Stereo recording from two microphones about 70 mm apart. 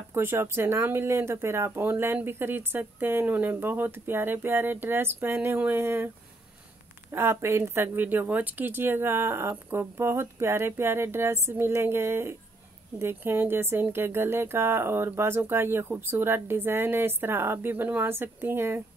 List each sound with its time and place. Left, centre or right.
0.1 s speech: right
7.1 s speech: right